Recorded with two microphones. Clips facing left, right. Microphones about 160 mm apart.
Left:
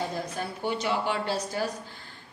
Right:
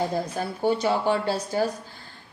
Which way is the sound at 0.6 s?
40° right (ahead or behind).